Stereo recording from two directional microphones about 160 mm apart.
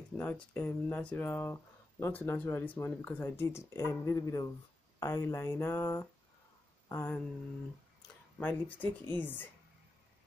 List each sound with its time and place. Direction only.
0.2 s speech: 10° left (ahead or behind)
8.4 s speech: 10° left (ahead or behind)